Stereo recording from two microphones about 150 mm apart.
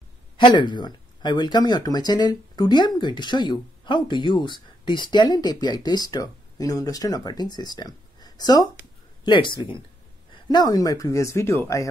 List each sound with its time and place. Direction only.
0.4 s speech: 30° left (ahead or behind)